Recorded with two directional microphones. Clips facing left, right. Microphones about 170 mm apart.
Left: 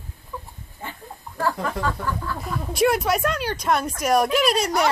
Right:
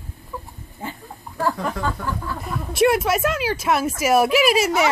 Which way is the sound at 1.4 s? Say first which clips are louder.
Right 1 dB; 20° right (ahead or behind).